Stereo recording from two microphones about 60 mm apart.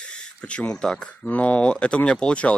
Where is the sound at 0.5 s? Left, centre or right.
Centre.